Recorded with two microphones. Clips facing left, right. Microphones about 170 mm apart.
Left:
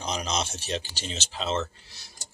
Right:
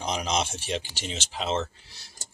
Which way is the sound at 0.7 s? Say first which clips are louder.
Even; 15° right (ahead or behind).